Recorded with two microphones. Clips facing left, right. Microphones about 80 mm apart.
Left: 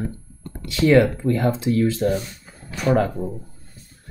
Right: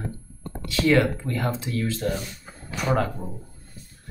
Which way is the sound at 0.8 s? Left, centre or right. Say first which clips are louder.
Left 5 dB; centre.